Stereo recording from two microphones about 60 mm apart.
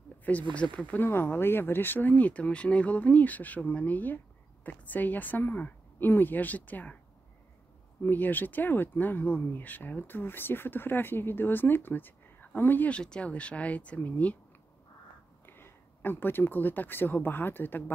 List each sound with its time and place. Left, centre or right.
0.2 s speech: left
0.9 s speech: left
8.0 s speech: left
12.9 s speech: centre
15.4 s speech: left